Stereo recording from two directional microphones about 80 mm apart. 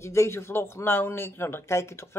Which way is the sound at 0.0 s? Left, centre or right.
Left.